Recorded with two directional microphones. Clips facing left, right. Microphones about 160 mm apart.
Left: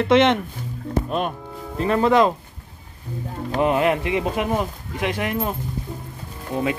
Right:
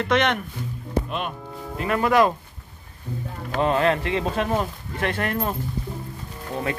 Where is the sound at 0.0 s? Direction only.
25° left (ahead or behind).